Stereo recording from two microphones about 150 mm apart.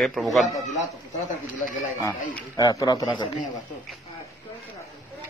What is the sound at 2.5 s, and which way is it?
Speech, 25° left (ahead or behind).